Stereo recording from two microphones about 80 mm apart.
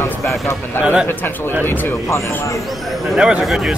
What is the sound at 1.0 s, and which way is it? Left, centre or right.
Speech, left.